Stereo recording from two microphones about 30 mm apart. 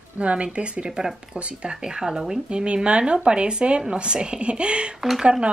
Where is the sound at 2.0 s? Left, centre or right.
Centre.